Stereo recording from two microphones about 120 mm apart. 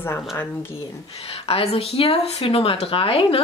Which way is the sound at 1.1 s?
55° left (ahead or behind).